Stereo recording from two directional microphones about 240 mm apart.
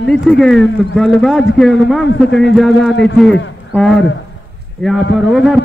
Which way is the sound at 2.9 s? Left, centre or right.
Left.